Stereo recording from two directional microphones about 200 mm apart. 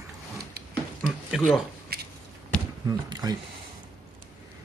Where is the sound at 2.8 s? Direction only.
20° right (ahead or behind).